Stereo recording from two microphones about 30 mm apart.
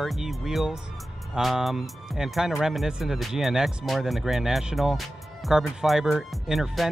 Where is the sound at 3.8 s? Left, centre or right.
Centre.